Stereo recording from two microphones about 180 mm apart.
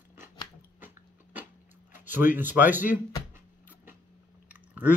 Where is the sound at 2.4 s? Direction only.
10° right (ahead or behind).